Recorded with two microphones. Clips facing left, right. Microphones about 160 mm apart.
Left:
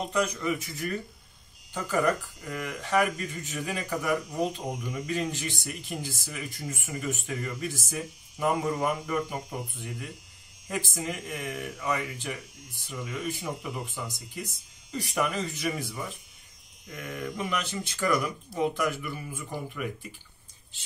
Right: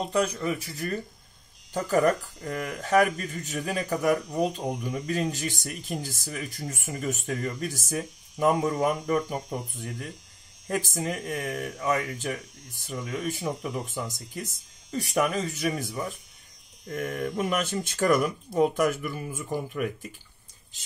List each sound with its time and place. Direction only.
0.1 s speech: 30° right (ahead or behind)